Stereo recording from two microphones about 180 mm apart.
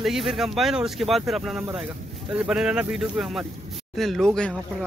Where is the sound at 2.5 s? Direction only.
5° right (ahead or behind).